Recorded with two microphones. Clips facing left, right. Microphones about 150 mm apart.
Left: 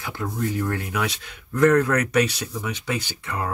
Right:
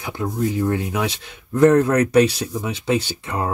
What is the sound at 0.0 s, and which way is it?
Speech, 20° right (ahead or behind).